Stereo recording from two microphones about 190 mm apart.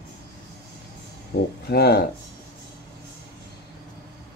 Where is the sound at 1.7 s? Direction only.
55° left (ahead or behind).